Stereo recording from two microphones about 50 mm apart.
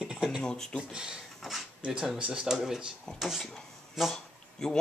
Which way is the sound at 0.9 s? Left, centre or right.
Centre.